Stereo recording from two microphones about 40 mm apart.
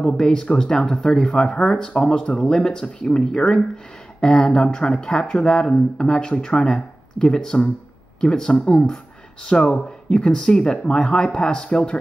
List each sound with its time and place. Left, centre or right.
0.0 s speech: centre